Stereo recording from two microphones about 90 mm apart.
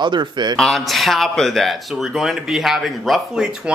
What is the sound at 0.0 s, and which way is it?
Speech, 55° right (ahead or behind).